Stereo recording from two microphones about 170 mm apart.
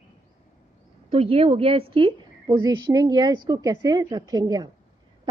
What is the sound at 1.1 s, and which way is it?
A woman's voice, 35° right (ahead or behind).